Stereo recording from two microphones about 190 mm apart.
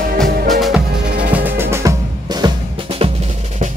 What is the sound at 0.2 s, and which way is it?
Music, centre (ahead or behind).